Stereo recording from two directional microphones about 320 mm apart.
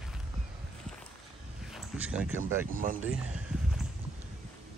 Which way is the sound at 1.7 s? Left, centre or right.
Centre.